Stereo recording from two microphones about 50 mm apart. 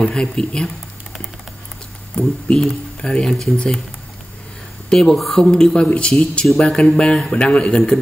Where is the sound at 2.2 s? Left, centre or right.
Left.